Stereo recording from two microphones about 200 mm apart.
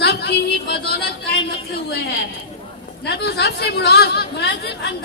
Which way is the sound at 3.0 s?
55° left (ahead or behind).